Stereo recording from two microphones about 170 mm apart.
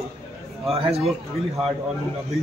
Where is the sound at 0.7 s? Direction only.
35° right (ahead or behind).